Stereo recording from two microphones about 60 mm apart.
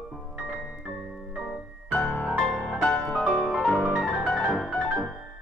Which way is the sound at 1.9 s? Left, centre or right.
Left.